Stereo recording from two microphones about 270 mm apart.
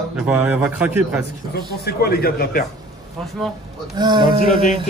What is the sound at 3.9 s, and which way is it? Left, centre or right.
Speech, centre.